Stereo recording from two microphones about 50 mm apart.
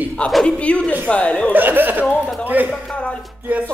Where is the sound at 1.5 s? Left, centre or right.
Right.